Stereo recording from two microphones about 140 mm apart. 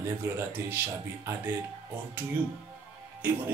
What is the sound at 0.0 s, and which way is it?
Music, 15° right (ahead or behind).